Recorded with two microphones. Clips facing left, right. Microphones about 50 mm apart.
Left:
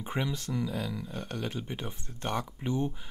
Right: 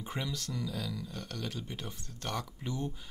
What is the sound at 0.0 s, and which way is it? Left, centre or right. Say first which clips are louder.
Speech: left 5 dB; left.